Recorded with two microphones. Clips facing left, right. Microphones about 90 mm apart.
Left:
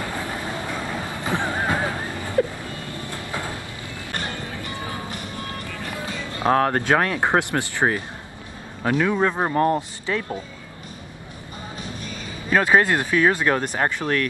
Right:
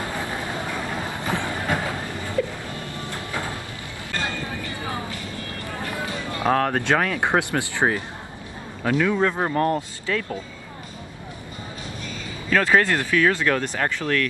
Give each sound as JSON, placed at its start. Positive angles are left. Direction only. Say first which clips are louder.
{"t": 0.0, "sound": "vehicle", "louder": "even", "side_deg": -20}
{"t": 1.2, "sound": "music", "louder": "left 4 dB", "side_deg": 20}
{"t": 2.4, "sound": "a sound", "louder": "left 4 dB", "side_deg": 35}
{"t": 2.7, "sound": "music", "louder": "even", "side_deg": -20}
{"t": 3.3, "sound": "a sound", "louder": "even", "side_deg": 20}
{"t": 4.6, "sound": "vehicle", "louder": "even", "side_deg": 20}
{"t": 5.2, "sound": "music", "louder": "left 1 dB", "side_deg": 20}
{"t": 5.9, "sound": "music", "louder": "even", "side_deg": -20}
{"t": 6.5, "sound": "speech", "louder": "left 2 dB", "side_deg": 5}
{"t": 7.5, "sound": "speech", "louder": "even", "side_deg": -15}
{"t": 8.8, "sound": "speech", "louder": "even", "side_deg": 20}
{"t": 12.4, "sound": "speech", "louder": "left 1 dB", "side_deg": 20}